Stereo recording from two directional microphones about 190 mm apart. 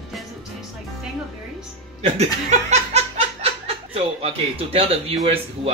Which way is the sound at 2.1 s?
35° right (ahead or behind).